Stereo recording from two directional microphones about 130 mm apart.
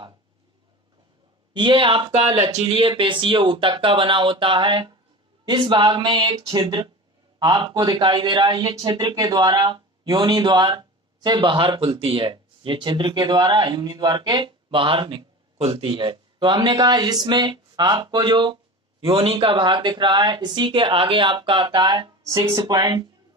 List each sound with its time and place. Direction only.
1.5 s a man's voice: 40° right (ahead or behind)